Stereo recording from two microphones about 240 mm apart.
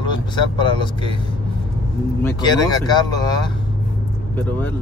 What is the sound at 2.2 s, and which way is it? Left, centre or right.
Speech, centre.